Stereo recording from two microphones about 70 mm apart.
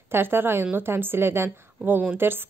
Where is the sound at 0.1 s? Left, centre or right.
Right.